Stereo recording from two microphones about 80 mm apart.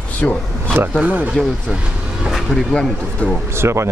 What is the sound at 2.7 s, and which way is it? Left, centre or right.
Speech, centre.